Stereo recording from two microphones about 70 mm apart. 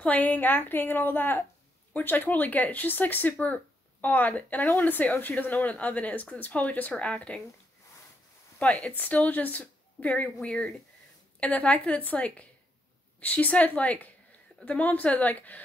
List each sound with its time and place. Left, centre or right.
0.0 s speech: left
8.6 s speech: centre